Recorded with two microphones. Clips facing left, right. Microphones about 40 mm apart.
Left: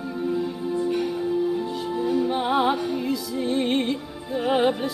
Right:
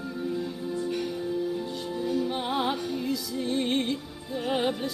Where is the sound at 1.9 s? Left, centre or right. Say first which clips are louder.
Left 5 dB; centre.